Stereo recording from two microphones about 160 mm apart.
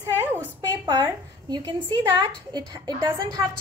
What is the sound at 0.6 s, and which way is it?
A woman's voice, 25° right (ahead or behind).